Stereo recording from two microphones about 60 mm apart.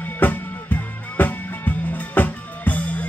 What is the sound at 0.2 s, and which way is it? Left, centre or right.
Music, left.